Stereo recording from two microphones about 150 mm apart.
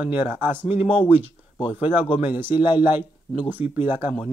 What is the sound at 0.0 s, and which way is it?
Speech, 15° right (ahead or behind).